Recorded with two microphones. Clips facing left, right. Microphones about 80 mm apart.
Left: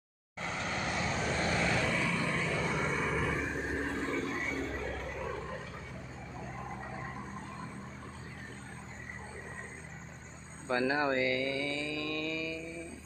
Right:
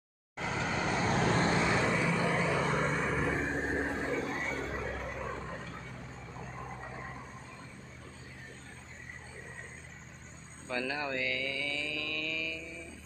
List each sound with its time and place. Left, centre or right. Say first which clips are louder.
0.4 s vehicle: right 3 dB; centre
1.1 s vehicle: right 5 dB; right
1.6 s vehicle: right 2 dB; right
3.3 s vehicle: right 2 dB; right
4.2 s a sound: even; centre
10.7 s mantra: left 5 dB; left